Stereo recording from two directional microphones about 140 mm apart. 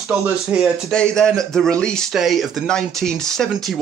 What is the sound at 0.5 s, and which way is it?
Speech, 5° right (ahead or behind).